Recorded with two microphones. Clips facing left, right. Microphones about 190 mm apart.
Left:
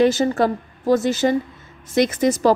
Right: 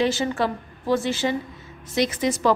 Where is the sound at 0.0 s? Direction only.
45° left (ahead or behind).